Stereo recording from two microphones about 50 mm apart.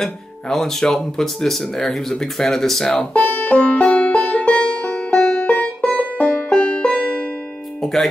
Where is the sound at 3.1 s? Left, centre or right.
Left.